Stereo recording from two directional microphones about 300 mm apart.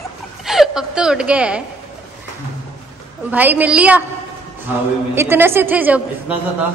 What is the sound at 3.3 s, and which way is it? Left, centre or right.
A woman's voice, centre.